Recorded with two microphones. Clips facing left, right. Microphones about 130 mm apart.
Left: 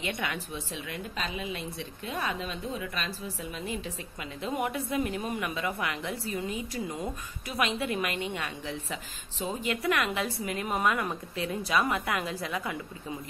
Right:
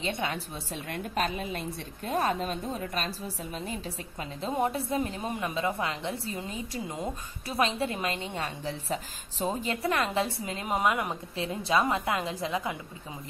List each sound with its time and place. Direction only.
0.0 s a woman's voice: 30° right (ahead or behind)
0.8 s a woman's voice: 50° right (ahead or behind); by 12.7 s 25° right (ahead or behind)